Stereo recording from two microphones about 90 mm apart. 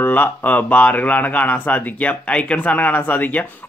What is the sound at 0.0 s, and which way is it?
Speech, 20° left (ahead or behind).